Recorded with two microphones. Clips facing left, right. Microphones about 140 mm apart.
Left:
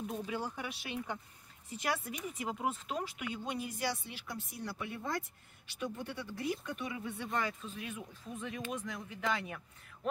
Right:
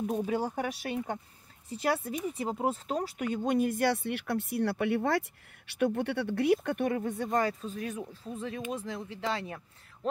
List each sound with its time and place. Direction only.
0.0 s speech: 45° right (ahead or behind)